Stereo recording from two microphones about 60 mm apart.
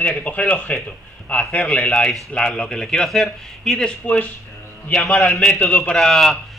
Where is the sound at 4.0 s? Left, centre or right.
Left.